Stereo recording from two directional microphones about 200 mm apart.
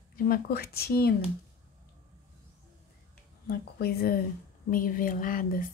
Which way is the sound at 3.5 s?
50° left (ahead or behind).